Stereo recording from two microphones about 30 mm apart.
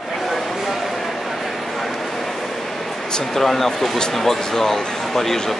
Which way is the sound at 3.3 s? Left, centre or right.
Centre.